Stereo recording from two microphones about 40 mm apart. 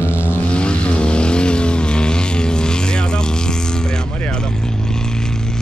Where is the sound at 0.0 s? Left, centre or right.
Left.